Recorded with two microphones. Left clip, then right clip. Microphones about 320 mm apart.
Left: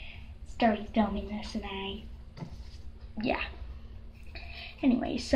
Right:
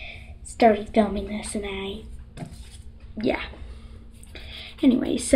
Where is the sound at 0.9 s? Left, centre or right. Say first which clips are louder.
Right 8 dB; centre.